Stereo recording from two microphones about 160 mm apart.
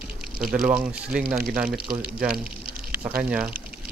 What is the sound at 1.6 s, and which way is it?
Speech, 70° right (ahead or behind).